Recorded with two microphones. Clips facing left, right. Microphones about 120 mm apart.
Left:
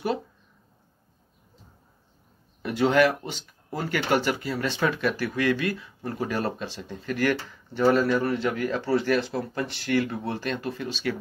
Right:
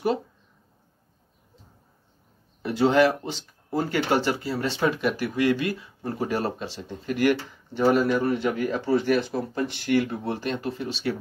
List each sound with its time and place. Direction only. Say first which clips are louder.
2.6 s speech: right 1 dB; 25° right (ahead or behind)